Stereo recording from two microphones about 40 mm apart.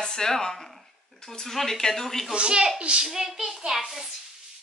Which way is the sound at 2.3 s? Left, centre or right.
Right.